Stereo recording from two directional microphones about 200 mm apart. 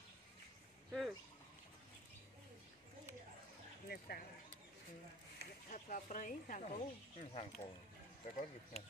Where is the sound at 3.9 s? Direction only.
50° left (ahead or behind).